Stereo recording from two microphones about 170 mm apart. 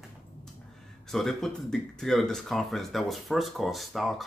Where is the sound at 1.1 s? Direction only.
Centre (ahead or behind).